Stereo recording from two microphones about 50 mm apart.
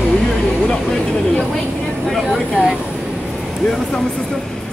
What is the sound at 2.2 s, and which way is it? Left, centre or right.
Vehicle, centre.